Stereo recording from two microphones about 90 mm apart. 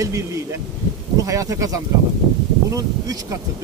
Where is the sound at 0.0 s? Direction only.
35° right (ahead or behind).